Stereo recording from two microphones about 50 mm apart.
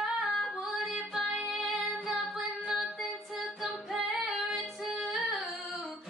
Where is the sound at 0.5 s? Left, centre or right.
Centre.